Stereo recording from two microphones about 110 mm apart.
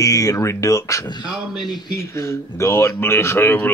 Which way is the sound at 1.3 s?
Centre (ahead or behind).